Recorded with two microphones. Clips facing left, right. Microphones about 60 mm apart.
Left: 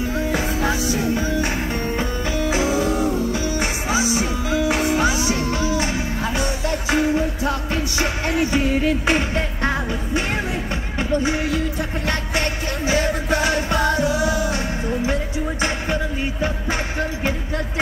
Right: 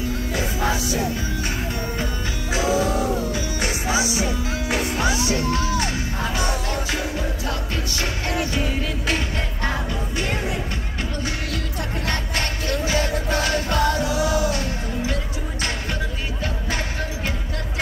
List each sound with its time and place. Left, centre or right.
3.3 s music: left
8.0 s music: left
12.1 s music: centre